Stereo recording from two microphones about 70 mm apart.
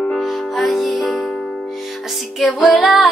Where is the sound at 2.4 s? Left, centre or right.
Centre.